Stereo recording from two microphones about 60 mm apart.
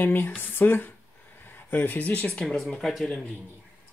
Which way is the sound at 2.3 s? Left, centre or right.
Centre.